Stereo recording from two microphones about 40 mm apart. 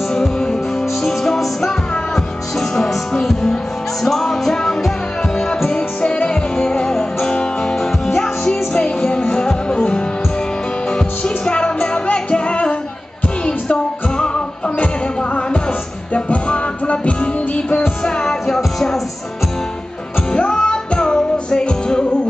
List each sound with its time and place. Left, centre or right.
0.1 s music: centre
4.0 s music: centre
5.7 s music: left
9.8 s music: left
16.1 s music: left
18.0 s music: centre
20.3 s music: left